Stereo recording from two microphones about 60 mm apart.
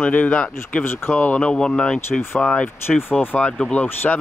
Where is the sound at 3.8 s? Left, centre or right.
Left.